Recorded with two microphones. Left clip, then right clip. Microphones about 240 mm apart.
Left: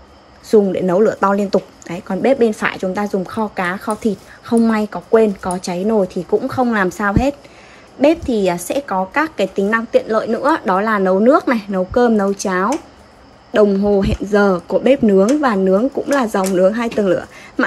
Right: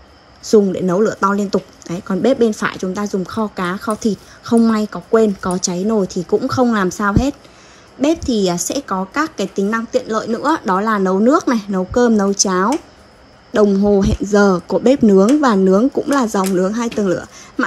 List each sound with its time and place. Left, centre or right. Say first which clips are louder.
0.4 s speech: even; centre